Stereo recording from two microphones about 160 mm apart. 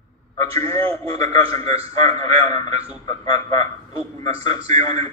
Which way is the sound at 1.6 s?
40° right (ahead or behind).